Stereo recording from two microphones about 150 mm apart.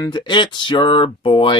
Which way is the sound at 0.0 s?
30° left (ahead or behind).